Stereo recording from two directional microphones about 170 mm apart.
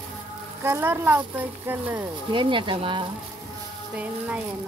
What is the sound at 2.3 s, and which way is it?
Speech, 30° right (ahead or behind).